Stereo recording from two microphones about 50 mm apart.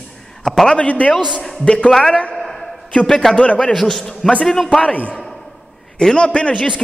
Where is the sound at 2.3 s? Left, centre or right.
Centre.